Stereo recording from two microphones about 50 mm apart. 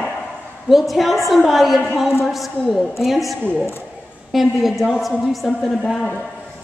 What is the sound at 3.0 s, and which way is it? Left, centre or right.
Speech, centre.